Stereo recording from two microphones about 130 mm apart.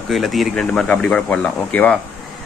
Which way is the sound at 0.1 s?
Centre (ahead or behind).